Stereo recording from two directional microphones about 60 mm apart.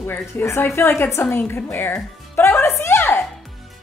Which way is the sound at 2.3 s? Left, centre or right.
Left.